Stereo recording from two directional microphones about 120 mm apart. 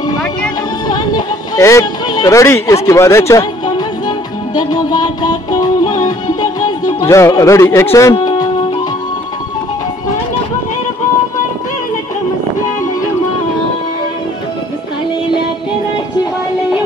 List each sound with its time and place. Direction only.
0.8 s music: 35° left (ahead or behind)
2.9 s speech: 25° left (ahead or behind)
4.6 s music: 35° left (ahead or behind)